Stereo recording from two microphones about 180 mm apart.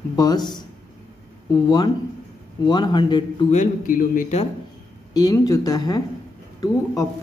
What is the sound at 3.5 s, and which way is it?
Speech, 45° left (ahead or behind).